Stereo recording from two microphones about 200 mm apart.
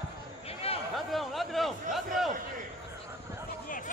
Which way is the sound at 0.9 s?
Centre (ahead or behind).